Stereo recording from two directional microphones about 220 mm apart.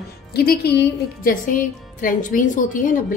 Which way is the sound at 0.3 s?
45° left (ahead or behind).